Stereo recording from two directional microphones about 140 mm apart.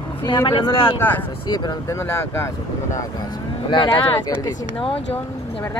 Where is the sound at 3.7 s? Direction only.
35° left (ahead or behind).